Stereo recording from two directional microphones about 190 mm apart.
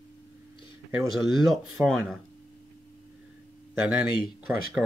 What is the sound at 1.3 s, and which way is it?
Speech, centre (ahead or behind).